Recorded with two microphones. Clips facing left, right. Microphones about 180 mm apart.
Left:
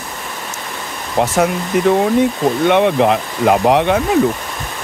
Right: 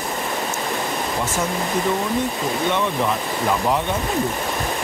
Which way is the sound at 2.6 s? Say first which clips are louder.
Left 10 dB; 70° left (ahead or behind).